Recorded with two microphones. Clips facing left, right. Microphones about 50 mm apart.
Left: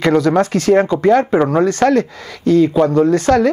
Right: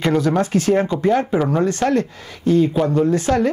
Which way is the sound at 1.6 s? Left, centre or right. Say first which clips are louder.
Left 5 dB; left.